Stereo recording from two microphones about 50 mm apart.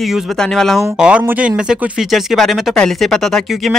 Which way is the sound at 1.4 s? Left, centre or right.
Right.